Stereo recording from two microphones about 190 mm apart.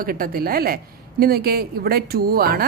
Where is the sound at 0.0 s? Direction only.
50° right (ahead or behind).